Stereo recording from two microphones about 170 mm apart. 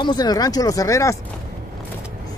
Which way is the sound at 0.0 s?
25° left (ahead or behind).